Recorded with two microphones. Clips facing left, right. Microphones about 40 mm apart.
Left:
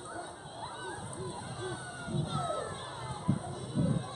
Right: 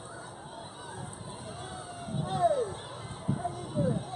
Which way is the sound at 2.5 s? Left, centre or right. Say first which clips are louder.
Right 6 dB; left.